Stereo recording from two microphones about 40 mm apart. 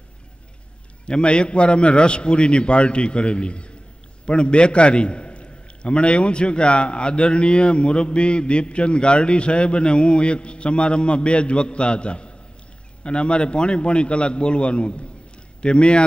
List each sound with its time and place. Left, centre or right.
1.0 s a man's voice: left